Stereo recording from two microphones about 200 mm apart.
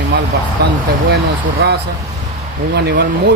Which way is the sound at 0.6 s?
55° right (ahead or behind).